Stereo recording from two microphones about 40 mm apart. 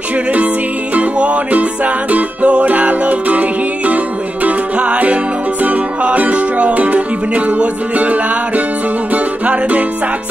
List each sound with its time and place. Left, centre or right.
0.9 s music: right